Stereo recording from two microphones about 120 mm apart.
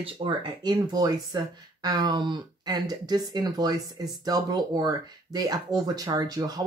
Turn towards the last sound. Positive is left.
turn(degrees=-35)  # may be behind; listen again after turning